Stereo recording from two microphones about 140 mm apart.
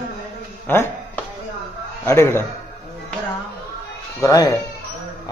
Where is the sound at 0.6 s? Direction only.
15° left (ahead or behind).